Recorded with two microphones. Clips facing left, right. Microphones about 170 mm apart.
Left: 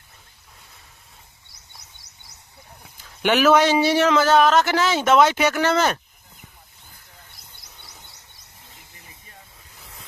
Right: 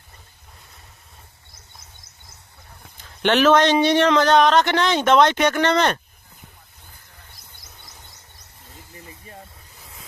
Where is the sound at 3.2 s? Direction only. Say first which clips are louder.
Right 1 dB; 10° left (ahead or behind).